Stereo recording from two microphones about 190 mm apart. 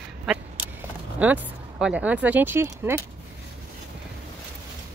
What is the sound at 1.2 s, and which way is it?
Speech, 10° right (ahead or behind).